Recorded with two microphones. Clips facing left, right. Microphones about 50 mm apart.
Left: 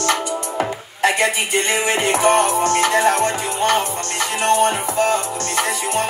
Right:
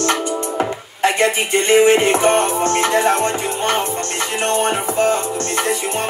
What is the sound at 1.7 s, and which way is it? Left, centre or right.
Music, right.